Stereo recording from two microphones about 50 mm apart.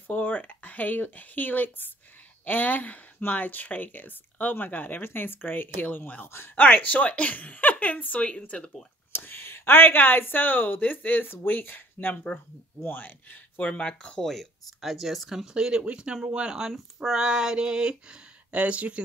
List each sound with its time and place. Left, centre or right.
0.1 s speech: left
6.2 s speech: left
6.5 s a woman's voice: left
9.1 s a woman's voice: left; by 14.2 s centre
14.2 s speech: centre; by 16.5 s right
16.7 s speech: centre
18.5 s speech: right